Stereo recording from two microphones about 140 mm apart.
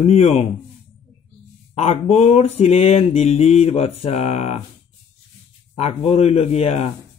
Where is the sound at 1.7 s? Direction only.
50° left (ahead or behind).